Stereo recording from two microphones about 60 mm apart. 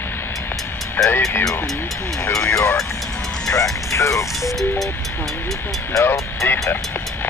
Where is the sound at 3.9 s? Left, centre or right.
Left.